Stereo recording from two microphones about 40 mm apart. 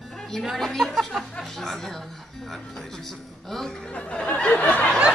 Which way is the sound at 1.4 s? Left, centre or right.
Centre.